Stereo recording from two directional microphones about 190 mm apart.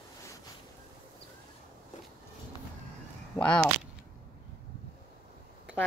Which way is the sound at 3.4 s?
10° left (ahead or behind).